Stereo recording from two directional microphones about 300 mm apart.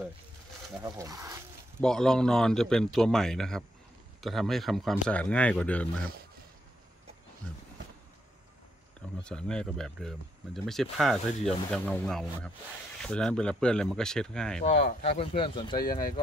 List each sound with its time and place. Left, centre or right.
0.8 s speech: centre
1.8 s speech: centre
9.2 s speech: centre
14.8 s speech: left